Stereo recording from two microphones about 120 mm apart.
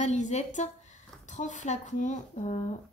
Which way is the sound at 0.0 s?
80° left.